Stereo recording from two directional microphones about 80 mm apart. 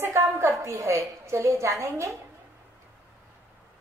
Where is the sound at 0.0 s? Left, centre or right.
Right.